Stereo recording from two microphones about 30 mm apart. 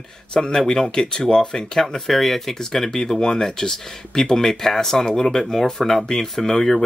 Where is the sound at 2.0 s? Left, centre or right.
Centre.